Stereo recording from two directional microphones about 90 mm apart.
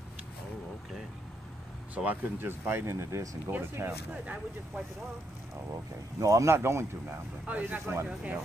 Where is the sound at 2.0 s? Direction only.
25° right (ahead or behind).